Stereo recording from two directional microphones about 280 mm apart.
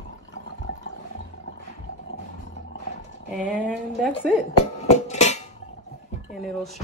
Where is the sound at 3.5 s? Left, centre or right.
Centre.